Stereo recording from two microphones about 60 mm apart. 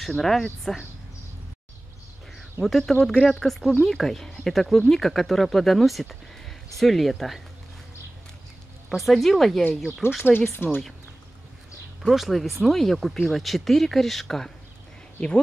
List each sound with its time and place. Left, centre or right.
0.0 s speech: centre
2.6 s speech: centre
8.8 s speech: centre
10.5 s speech: left
12.0 s speech: centre
15.1 s speech: left